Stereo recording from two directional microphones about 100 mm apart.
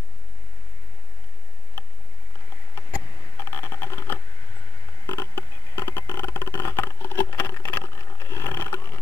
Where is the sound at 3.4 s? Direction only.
30° left (ahead or behind).